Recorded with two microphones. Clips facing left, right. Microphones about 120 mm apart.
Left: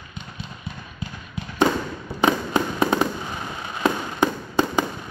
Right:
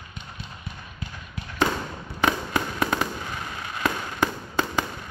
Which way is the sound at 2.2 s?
25° left (ahead or behind).